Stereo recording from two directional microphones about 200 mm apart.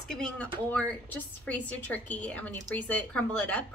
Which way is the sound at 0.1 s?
5° left (ahead or behind).